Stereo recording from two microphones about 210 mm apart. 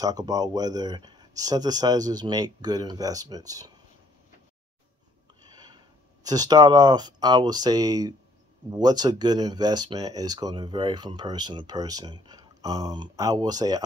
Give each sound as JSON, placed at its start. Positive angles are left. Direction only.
{"t": 0.0, "sound": "speech", "side_deg": -15}
{"t": 5.4, "sound": "a sound", "side_deg": -20}
{"t": 6.2, "sound": "speech", "side_deg": -20}